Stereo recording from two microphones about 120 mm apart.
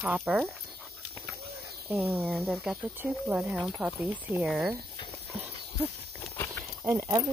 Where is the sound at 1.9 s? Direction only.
15° right (ahead or behind).